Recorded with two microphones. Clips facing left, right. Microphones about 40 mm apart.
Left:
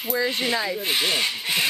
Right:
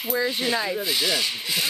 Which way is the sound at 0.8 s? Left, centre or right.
Left.